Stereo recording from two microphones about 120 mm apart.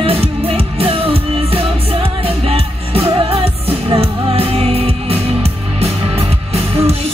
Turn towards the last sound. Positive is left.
turn(degrees=-60)  # may be behind; listen again after turning